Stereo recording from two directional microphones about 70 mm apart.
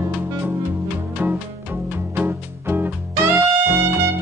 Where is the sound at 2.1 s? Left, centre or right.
Right.